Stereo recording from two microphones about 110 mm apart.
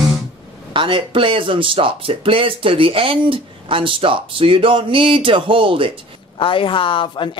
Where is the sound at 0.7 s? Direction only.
50° right (ahead or behind).